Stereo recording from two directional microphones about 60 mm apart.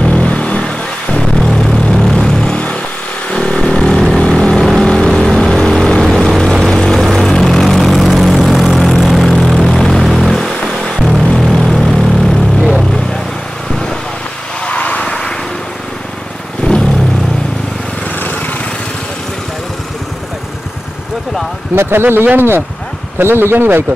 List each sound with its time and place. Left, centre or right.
0.0 s vehicle: left
10.0 s music: centre
10.3 s vehicle: centre
14.7 s vehicle: left
21.7 s speech: right